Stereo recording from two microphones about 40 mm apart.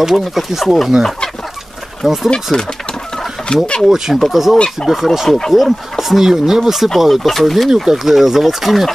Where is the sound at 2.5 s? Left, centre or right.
Left.